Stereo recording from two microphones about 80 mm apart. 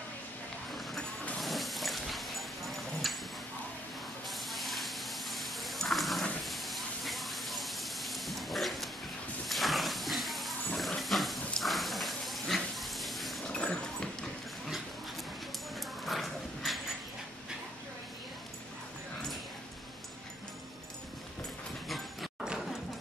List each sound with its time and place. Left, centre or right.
1.4 s dog: centre
4.3 s a sound: centre
9.5 s pig: centre
13.5 s dog: centre
16.1 s dog: centre
21.8 s a sound: centre